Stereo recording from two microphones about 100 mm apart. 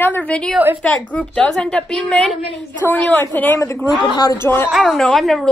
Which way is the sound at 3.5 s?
30° left (ahead or behind).